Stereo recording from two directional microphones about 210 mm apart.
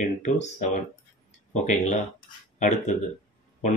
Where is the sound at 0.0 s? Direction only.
35° left (ahead or behind).